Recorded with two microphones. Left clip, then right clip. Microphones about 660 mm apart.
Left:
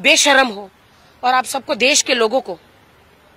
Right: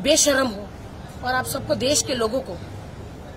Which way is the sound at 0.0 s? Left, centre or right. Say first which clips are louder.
Left 7 dB; left.